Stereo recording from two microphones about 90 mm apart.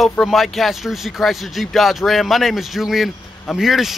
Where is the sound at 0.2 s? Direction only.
Centre (ahead or behind).